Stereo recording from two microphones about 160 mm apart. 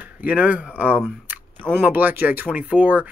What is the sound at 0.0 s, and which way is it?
Speech, 10° right (ahead or behind).